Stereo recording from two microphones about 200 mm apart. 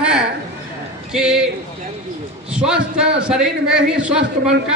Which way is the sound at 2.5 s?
5° right (ahead or behind).